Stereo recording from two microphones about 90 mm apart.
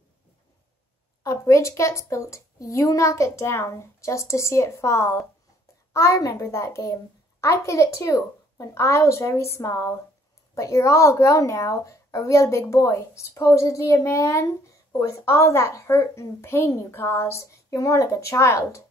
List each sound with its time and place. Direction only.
1.2 s speech: 35° left (ahead or behind)